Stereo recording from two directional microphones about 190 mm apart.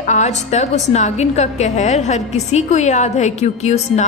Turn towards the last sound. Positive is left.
turn(degrees=35)  # may be behind; listen again after turning